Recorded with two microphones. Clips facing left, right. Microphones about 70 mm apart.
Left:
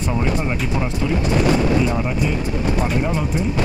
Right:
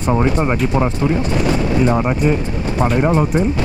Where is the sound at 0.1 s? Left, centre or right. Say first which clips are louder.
Right 7 dB; right.